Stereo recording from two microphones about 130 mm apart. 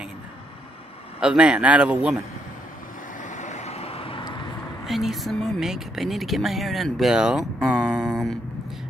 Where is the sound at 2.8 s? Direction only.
90° left; by 4.3 s 45° left (ahead or behind).